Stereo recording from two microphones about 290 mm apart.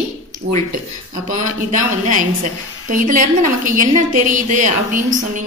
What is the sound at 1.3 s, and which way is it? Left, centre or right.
Speech, right.